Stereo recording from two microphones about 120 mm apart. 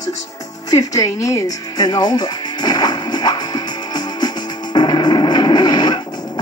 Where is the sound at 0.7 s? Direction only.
30° left (ahead or behind).